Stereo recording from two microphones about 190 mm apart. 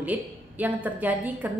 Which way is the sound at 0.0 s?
10° right (ahead or behind).